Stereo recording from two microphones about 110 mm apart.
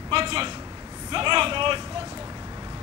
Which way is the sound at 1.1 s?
45° right (ahead or behind).